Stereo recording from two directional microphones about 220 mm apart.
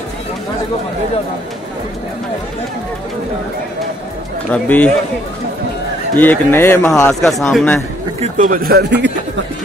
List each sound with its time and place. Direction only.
4.5 s speech: 5° left (ahead or behind)
6.1 s speech: 10° left (ahead or behind)
8.2 s speech: 35° right (ahead or behind)